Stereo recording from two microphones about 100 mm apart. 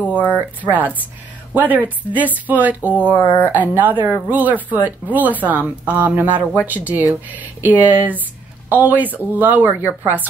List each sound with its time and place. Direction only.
0.6 s speech: 15° right (ahead or behind)